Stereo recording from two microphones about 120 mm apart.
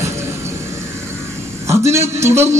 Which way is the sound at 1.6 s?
25° right (ahead or behind).